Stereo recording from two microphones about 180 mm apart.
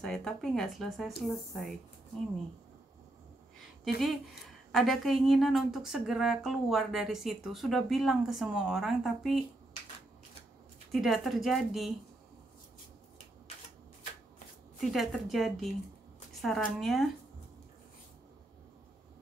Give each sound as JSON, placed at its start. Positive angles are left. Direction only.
{"t": 0.0, "sound": "speech", "side_deg": 5}
{"t": 3.8, "sound": "speech", "side_deg": 0}
{"t": 10.9, "sound": "speech", "side_deg": 0}
{"t": 14.8, "sound": "speech", "side_deg": 0}